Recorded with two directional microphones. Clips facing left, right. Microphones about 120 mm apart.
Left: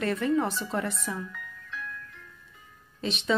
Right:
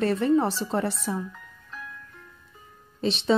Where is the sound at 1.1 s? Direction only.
30° right (ahead or behind).